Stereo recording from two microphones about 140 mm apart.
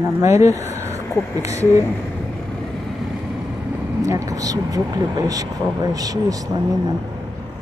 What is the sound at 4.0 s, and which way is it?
Speech, 20° right (ahead or behind).